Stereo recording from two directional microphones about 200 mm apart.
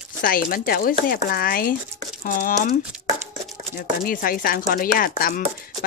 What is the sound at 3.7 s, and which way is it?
Chopping, 45° left (ahead or behind).